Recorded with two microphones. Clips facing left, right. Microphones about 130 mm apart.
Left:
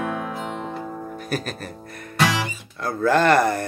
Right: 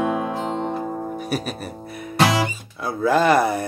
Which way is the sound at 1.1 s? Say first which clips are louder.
Right 2 dB; 5° right (ahead or behind).